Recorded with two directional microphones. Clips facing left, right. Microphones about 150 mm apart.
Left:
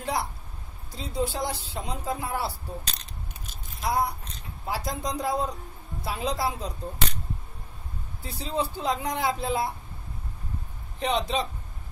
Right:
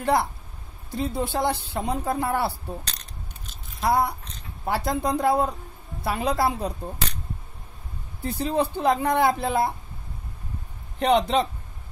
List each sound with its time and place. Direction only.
0.0 s speech: 55° right (ahead or behind)
3.8 s speech: 60° right (ahead or behind)
8.2 s speech: 60° right (ahead or behind)
11.0 s speech: 60° right (ahead or behind)